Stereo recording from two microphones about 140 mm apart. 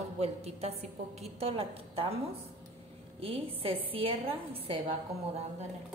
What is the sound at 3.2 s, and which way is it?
A woman's voice, 40° right (ahead or behind).